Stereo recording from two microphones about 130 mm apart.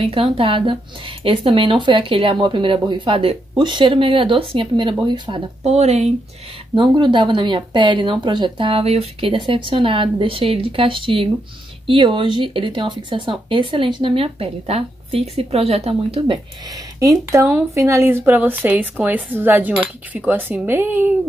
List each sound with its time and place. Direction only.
0.0 s speech: 45° right (ahead or behind)
5.6 s speech: 55° right (ahead or behind)
6.7 s speech: 40° right (ahead or behind)
17.0 s speech: 25° right (ahead or behind)